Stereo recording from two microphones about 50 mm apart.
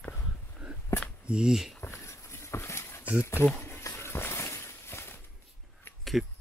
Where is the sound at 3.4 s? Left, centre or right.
Left.